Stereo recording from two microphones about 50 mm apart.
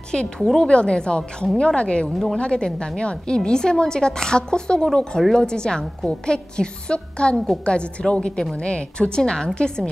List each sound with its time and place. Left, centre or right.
0.6 s a woman's voice: centre